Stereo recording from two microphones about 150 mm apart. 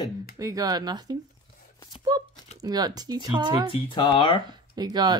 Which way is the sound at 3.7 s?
35° left (ahead or behind).